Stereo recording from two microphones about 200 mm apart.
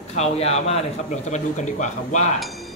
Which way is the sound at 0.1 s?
35° left (ahead or behind).